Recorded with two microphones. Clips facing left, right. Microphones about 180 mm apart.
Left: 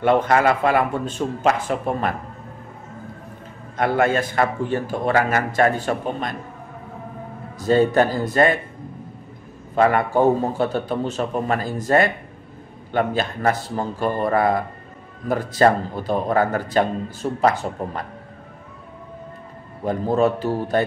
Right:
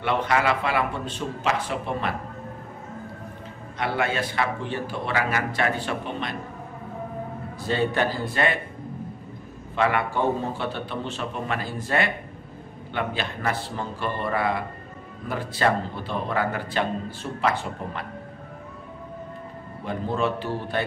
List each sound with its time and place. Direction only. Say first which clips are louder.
0.0 s a man's voice: left 6 dB; 45° left (ahead or behind)
3.7 s a man's voice: left 7 dB; 45° left (ahead or behind)
7.6 s a man's voice: left 8 dB; 45° left (ahead or behind)
9.8 s a man's voice: left 6 dB; 45° left (ahead or behind)
19.8 s a man's voice: left 7 dB; 40° left (ahead or behind)